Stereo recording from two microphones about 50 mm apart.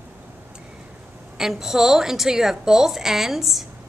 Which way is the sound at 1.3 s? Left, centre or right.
Centre.